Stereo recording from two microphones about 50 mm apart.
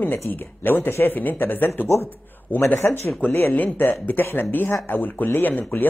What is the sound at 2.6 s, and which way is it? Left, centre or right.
Speech, left.